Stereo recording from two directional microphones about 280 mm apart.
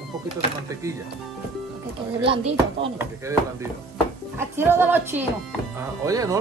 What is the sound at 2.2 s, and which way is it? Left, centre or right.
Speech, centre.